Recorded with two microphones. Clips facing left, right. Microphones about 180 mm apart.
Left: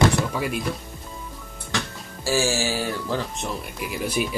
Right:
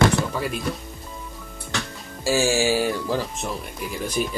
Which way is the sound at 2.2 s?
15° right (ahead or behind).